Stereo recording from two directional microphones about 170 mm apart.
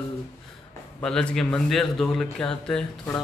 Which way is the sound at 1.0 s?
5° left (ahead or behind).